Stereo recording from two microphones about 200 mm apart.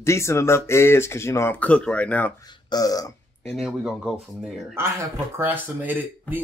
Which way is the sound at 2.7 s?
20° left (ahead or behind).